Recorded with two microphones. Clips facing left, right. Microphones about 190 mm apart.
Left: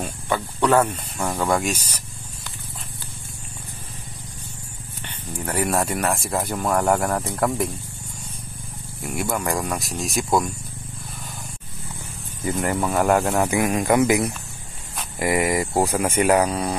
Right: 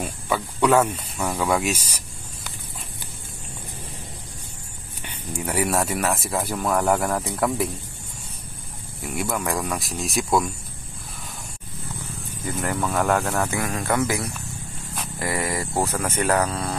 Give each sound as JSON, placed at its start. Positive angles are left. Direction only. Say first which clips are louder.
{"t": 0.0, "sound": "snake", "louder": "left 1 dB", "side_deg": -5}
{"t": 1.4, "sound": "speech", "louder": "left 1 dB", "side_deg": -5}
{"t": 5.0, "sound": "speech", "louder": "right 1 dB", "side_deg": -10}
{"t": 9.0, "sound": "speech", "louder": "left 1 dB", "side_deg": 0}
{"t": 12.6, "sound": "speech", "louder": "left 2 dB", "side_deg": 10}